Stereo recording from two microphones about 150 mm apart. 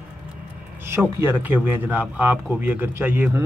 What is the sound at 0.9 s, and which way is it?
Speech, 15° right (ahead or behind).